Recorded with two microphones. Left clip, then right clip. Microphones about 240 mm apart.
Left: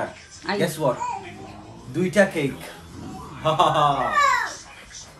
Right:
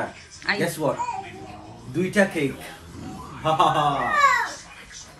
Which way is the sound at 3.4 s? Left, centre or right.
Centre.